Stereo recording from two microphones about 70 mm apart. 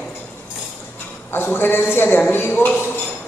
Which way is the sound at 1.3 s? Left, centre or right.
Left.